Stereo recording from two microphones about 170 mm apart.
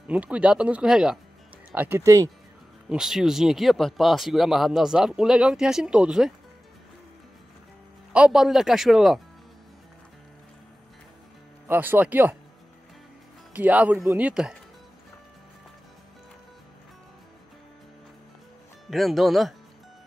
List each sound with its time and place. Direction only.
0.1 s speech: 5° right (ahead or behind)
2.9 s speech: 5° right (ahead or behind)
8.1 s speech: 5° right (ahead or behind)
11.6 s speech: 10° right (ahead or behind)
13.5 s speech: 10° right (ahead or behind)
18.9 s speech: centre (ahead or behind)